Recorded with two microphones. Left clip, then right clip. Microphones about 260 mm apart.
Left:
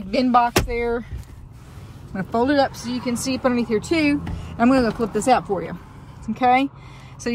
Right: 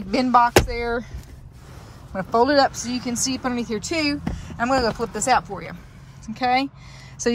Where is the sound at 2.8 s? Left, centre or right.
Right.